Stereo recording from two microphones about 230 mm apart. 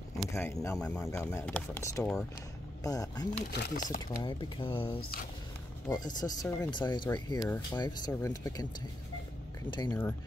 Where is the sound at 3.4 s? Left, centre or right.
Left.